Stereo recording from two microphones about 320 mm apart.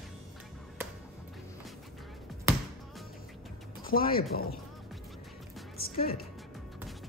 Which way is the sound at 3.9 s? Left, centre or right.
Left.